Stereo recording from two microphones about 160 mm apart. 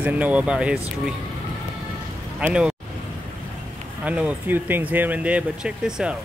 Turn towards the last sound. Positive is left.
turn(degrees=-5)  # may be behind; listen again after turning